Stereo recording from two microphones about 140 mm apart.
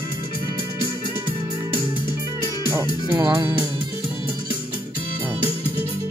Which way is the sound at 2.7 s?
20° right (ahead or behind).